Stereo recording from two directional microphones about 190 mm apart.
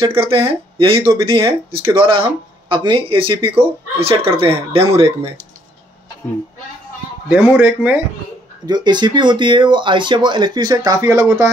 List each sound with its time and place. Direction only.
0.0 s speech: 30° right (ahead or behind)
7.2 s a man's voice: 10° right (ahead or behind)
8.6 s speech: 20° right (ahead or behind)